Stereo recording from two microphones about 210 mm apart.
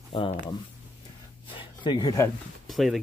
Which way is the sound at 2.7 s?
Centre (ahead or behind).